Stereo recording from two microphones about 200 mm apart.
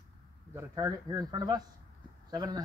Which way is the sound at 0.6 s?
20° right (ahead or behind).